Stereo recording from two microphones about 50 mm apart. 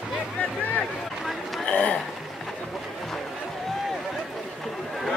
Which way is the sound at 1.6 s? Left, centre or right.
Left.